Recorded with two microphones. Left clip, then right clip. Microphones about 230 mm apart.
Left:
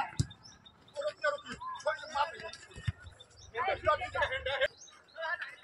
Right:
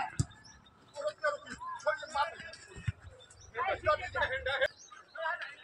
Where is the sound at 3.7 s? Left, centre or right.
Left.